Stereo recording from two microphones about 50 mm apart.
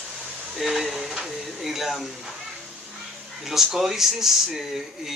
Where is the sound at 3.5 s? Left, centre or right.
Centre.